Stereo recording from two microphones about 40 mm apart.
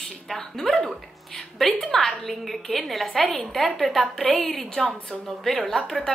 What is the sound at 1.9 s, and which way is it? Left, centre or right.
A woman's voice, centre.